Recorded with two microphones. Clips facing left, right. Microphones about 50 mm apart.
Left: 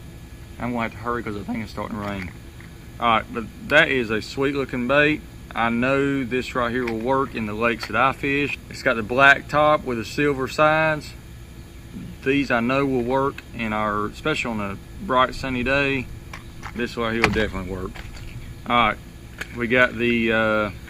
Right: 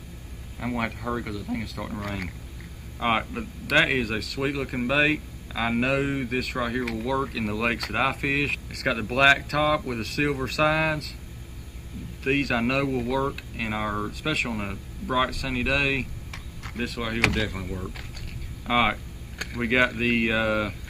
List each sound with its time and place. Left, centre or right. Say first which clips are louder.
0.7 s speech: left 3 dB; left
12.2 s speech: left 4 dB; left
14.5 s speech: left 4 dB; left
15.0 s speech: left 6 dB; left
17.6 s speech: left 4 dB; left
18.7 s speech: left 4 dB; left
20.0 s speech: left 4 dB; left